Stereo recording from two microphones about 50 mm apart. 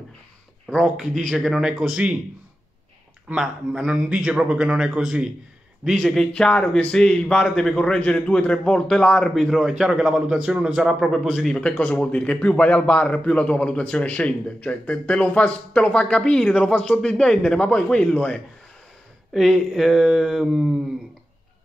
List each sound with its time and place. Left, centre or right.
1.2 s speech: centre
3.3 s a man's voice: centre
6.0 s a man's voice: centre
9.3 s speech: centre
11.2 s speech: centre
11.7 s a man's voice: left
19.3 s speech: centre